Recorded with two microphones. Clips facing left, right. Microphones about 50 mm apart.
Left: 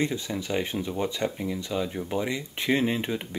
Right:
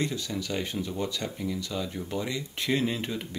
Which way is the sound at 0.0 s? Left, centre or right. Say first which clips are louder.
Left 3 dB; left.